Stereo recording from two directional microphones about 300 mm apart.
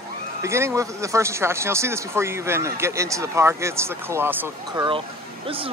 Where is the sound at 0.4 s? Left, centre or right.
Centre.